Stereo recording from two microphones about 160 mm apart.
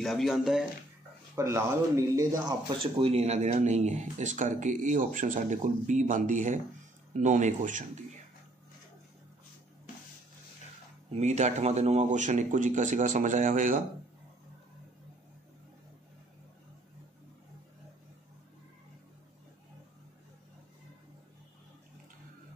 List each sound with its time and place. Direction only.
0.0 s speech: centre (ahead or behind)
1.3 s speech: 15° right (ahead or behind)
2.8 s speech: 40° right (ahead or behind)
11.1 s speech: 45° right (ahead or behind)